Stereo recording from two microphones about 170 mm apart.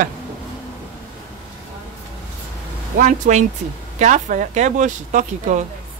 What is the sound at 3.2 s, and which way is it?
Speech, 50° right (ahead or behind).